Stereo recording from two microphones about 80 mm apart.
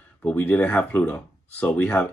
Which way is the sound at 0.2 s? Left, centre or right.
Centre.